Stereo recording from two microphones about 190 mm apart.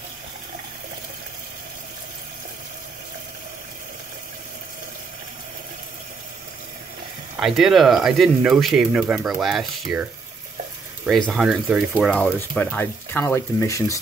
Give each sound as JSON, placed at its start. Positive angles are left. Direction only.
{"t": 7.3, "sound": "speech", "side_deg": 0}
{"t": 11.1, "sound": "speech", "side_deg": 0}
{"t": 11.9, "sound": "speech", "side_deg": 10}